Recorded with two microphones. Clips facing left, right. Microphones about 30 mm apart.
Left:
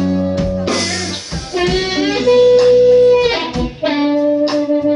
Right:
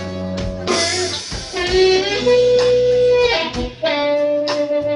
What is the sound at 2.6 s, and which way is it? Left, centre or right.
Music, centre.